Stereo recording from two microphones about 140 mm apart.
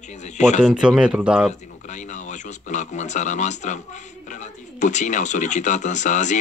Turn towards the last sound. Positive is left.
turn(degrees=60)  # may be behind; listen again after turning